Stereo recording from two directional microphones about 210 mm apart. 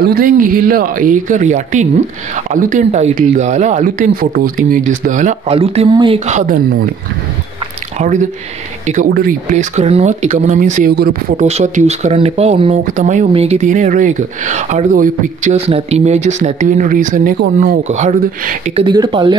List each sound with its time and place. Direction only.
0.0 s speech: 45° right (ahead or behind)
8.0 s speech: 35° right (ahead or behind)
11.4 s speech: 35° right (ahead or behind)
18.9 s speech: 20° right (ahead or behind)